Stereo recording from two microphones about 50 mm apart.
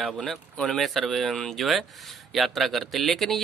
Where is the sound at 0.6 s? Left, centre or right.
Centre.